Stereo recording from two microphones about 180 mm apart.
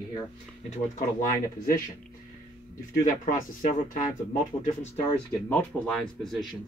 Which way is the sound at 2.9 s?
50° left (ahead or behind).